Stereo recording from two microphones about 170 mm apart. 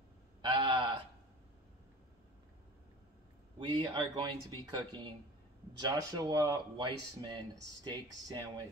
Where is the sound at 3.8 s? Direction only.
25° right (ahead or behind).